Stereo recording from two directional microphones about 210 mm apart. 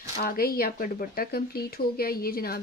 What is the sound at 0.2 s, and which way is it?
Speech, 45° left (ahead or behind).